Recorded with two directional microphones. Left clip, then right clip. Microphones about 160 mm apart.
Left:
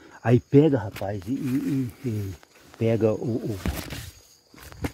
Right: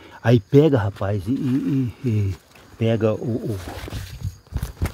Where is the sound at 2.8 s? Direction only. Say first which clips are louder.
Right 2 dB; 20° left (ahead or behind).